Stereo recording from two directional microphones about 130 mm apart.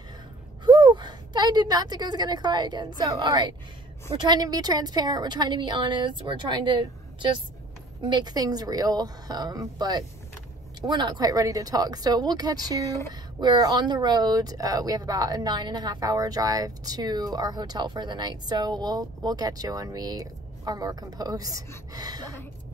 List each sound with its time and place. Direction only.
0.7 s a woman's voice: 35° right (ahead or behind)